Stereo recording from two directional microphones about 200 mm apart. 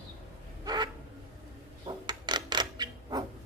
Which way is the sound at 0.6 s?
20° right (ahead or behind).